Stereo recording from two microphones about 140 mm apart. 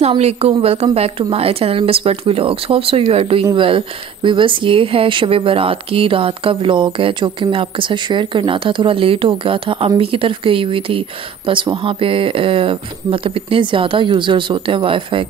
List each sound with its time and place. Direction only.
0.2 s speech: 45° right (ahead or behind)